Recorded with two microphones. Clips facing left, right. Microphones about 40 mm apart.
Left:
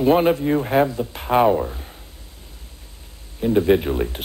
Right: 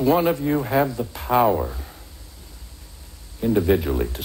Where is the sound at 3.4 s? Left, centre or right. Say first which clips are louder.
Left 2 dB; left.